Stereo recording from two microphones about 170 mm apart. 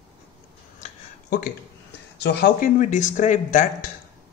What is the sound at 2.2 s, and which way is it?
Speech, 75° left (ahead or behind).